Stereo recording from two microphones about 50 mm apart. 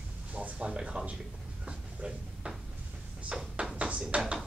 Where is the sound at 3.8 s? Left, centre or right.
Right.